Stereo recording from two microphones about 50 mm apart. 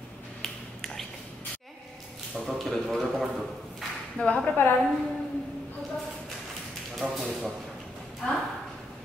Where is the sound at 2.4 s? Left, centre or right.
Centre.